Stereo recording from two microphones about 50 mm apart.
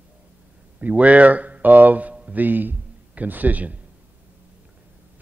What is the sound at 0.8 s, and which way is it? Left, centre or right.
A man's voice, right.